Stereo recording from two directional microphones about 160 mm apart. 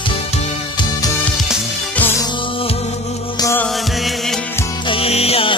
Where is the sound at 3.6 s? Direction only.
Centre (ahead or behind).